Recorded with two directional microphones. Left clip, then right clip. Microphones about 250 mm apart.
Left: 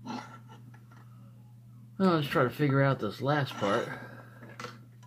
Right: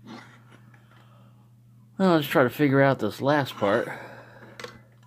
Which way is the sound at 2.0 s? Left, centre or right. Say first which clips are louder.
Right 6 dB; right.